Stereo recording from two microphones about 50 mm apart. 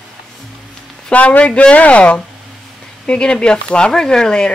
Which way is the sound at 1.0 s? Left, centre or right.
Left.